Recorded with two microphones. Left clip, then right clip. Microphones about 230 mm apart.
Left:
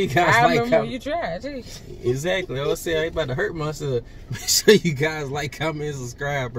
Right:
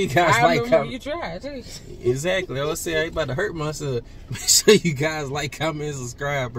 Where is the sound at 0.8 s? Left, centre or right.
Centre.